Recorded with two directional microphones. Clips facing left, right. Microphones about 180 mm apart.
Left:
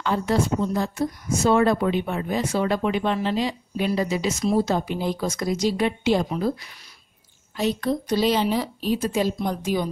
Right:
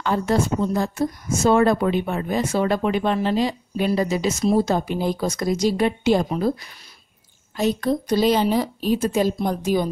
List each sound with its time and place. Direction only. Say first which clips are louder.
0.0 s a woman's voice: right 2 dB; 45° right (ahead or behind)